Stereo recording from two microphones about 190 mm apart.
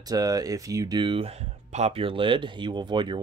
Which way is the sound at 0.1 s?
20° right (ahead or behind).